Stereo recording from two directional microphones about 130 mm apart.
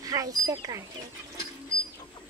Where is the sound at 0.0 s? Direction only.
25° right (ahead or behind).